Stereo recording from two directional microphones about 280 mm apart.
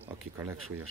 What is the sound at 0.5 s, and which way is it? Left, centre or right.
Speech, right.